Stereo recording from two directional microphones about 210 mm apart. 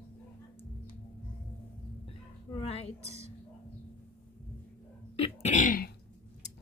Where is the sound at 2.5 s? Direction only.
30° left (ahead or behind).